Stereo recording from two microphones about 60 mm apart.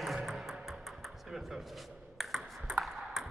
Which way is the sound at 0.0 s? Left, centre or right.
Centre.